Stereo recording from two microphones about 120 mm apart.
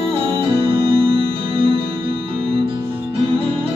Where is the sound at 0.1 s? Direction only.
50° right (ahead or behind).